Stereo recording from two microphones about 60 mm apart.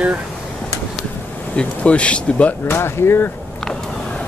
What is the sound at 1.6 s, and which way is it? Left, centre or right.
Speech, left.